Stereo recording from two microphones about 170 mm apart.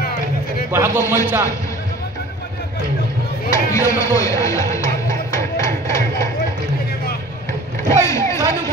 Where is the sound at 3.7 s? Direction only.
20° left (ahead or behind).